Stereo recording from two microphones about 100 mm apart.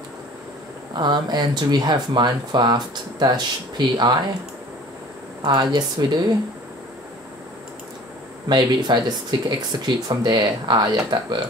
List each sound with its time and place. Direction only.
0.9 s speech: 45° right (ahead or behind)
5.4 s speech: 50° right (ahead or behind)
8.5 s speech: 50° right (ahead or behind)